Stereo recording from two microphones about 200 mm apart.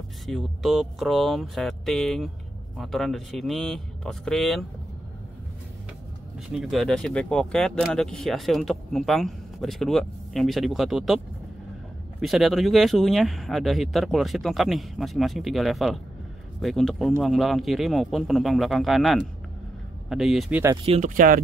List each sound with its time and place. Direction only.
0.3 s speech: centre (ahead or behind)
6.5 s speech: centre (ahead or behind)
12.2 s speech: centre (ahead or behind)
20.8 s speech: 35° right (ahead or behind)